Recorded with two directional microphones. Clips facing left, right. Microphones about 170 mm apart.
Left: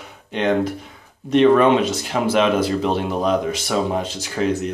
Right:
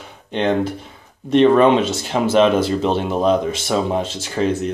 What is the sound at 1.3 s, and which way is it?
Speech, 30° right (ahead or behind).